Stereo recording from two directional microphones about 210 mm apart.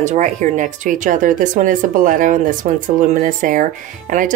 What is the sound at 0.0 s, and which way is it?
Speech, 35° right (ahead or behind).